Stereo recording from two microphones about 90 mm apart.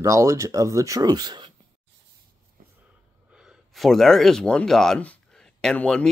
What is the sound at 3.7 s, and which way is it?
Speech, centre (ahead or behind).